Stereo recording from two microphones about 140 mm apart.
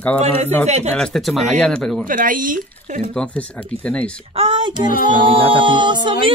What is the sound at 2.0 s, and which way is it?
Speech, 75° right (ahead or behind).